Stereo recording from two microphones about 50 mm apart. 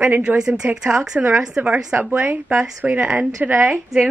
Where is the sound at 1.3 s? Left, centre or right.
Centre.